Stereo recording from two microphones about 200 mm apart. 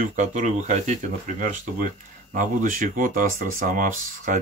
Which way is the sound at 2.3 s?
40° right (ahead or behind).